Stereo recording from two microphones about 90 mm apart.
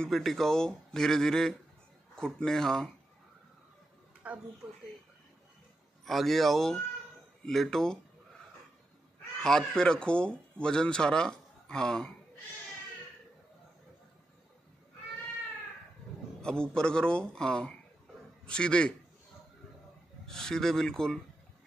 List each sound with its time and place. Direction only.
0.0 s speech: 5° left (ahead or behind)
4.2 s speech: 15° right (ahead or behind)
6.0 s speech: centre (ahead or behind)
9.4 s a man's voice: 5° left (ahead or behind)
16.3 s a man's voice: 10° left (ahead or behind)
20.2 s speech: 5° left (ahead or behind)